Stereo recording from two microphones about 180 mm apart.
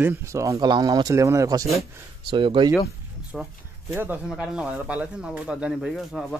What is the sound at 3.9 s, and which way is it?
Speech, 10° right (ahead or behind).